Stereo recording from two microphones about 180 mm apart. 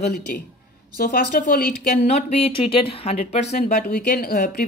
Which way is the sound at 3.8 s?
60° left (ahead or behind).